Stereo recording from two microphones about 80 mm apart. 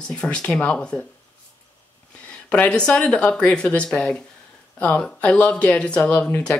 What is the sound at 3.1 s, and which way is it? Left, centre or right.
Speech, centre.